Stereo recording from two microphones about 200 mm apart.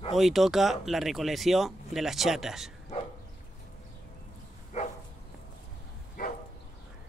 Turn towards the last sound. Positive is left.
turn(degrees=45)  # may be behind; listen again after turning